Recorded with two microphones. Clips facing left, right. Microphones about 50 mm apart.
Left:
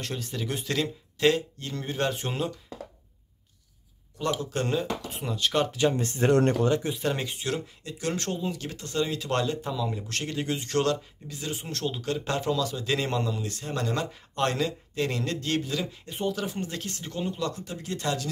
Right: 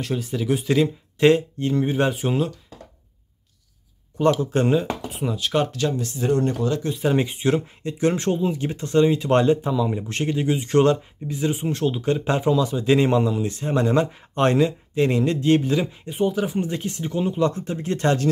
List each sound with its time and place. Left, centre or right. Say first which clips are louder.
0.0 s speech: right 8 dB; centre
1.2 s speech: right 7 dB; right
2.1 s speech: right 7 dB; centre
4.4 s speech: right 8 dB; right
5.1 s speech: right 4 dB; centre
5.9 s speech: right 2 dB; left
6.2 s speech: even; left
7.0 s speech: right 8 dB; centre
10.3 s speech: right 8 dB; centre
17.5 s speech: right 8 dB; right